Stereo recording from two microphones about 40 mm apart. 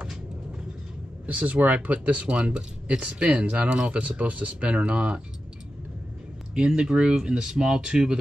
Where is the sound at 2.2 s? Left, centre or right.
Right.